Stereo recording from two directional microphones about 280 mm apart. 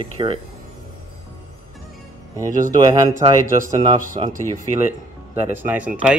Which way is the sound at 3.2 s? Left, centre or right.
Centre.